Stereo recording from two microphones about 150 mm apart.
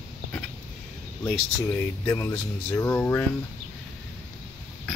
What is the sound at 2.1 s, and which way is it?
Speech, 15° left (ahead or behind).